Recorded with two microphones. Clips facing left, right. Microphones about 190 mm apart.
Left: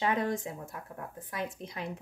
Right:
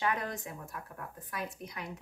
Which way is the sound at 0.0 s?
25° left (ahead or behind).